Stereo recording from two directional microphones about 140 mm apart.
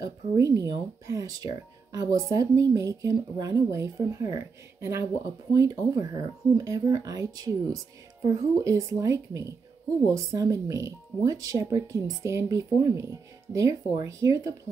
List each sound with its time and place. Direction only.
0.0 s speech: 25° right (ahead or behind)